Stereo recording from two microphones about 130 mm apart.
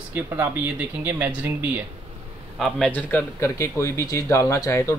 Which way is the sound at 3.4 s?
20° left (ahead or behind).